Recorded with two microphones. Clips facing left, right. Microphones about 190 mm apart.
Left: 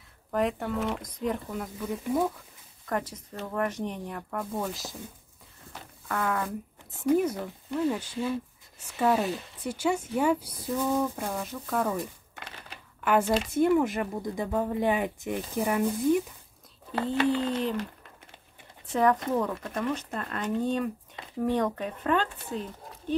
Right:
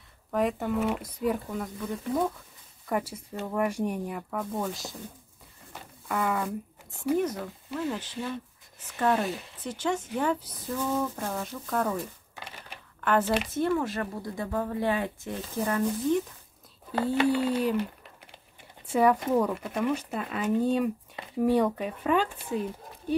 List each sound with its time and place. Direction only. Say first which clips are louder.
0.3 s speech: right 1 dB; centre (ahead or behind)
2.9 s speech: right 1 dB; 10° right (ahead or behind)
5.7 s a sound: right 1 dB; 10° right (ahead or behind)
7.0 s speech: left 2 dB; 5° left (ahead or behind)
11.3 s speech: even; centre (ahead or behind)
13.0 s speech: left 1 dB; 10° left (ahead or behind)
16.9 s speech: right 1 dB; 10° right (ahead or behind)
18.9 s speech: right 1 dB; 10° right (ahead or behind)